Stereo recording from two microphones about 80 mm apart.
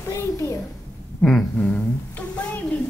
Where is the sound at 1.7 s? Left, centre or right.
Centre.